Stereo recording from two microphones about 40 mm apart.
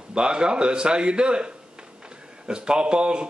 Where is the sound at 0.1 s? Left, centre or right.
Right.